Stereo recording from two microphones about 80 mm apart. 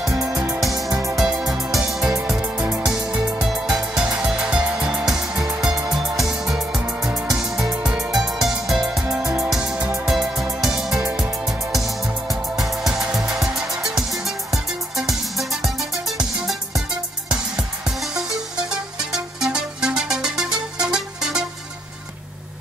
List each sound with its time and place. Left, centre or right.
0.1 s music: right
0.6 s music: centre
0.8 s music: right
1.1 s music: centre
2.8 s music: centre